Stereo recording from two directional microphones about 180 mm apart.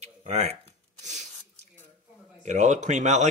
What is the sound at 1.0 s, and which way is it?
Sneeze, 40° right (ahead or behind).